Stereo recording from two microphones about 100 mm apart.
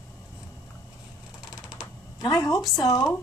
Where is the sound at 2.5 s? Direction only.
35° left (ahead or behind).